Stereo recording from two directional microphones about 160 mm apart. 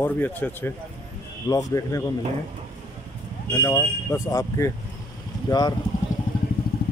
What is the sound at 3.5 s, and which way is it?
A man's voice, 15° left (ahead or behind).